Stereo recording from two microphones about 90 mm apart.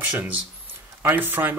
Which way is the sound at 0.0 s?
20° right (ahead or behind).